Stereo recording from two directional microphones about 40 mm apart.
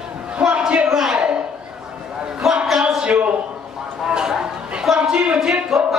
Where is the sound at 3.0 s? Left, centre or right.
Right.